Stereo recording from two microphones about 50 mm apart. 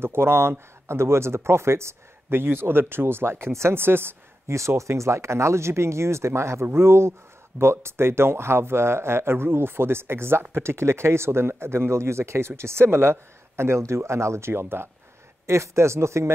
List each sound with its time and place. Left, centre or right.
0.0 s speech: right
4.5 s speech: right
15.4 s speech: right